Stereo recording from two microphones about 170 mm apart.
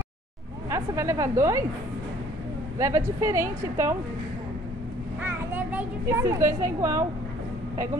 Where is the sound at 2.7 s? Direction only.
20° right (ahead or behind).